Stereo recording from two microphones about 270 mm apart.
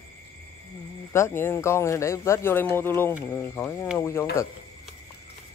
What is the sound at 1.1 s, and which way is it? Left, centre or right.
Speech, centre.